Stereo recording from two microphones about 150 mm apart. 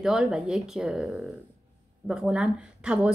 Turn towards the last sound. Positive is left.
turn(degrees=-5)  # may be behind; listen again after turning